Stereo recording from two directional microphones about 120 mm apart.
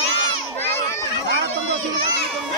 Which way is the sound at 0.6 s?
20° left (ahead or behind).